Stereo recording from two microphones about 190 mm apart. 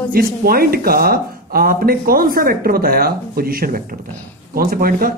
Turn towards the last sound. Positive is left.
turn(degrees=-50)  # may be behind; listen again after turning